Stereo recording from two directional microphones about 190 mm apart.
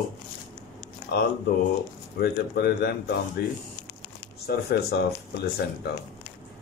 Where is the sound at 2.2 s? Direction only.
55° left (ahead or behind).